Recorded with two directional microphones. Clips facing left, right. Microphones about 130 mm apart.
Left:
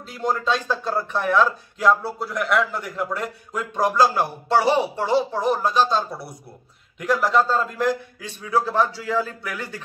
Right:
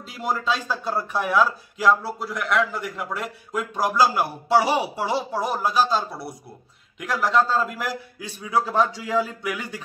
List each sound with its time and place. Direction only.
0.1 s a man's voice: 5° right (ahead or behind)